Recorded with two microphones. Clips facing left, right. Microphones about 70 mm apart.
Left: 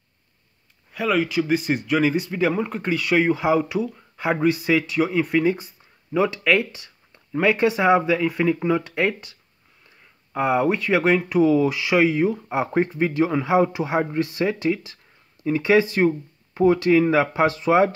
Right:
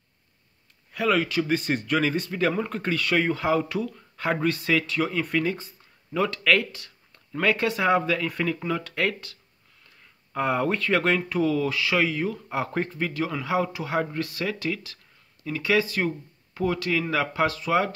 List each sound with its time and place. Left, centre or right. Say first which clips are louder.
0.9 s speech: left 2 dB; centre; by 17.9 s left